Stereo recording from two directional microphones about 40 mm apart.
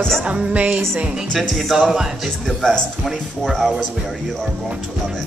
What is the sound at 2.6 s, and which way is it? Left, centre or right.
Speech, centre.